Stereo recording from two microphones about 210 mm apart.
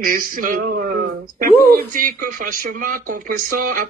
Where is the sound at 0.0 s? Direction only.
40° right (ahead or behind).